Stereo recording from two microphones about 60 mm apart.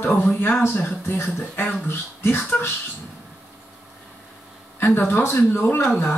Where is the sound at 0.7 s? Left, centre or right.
Left.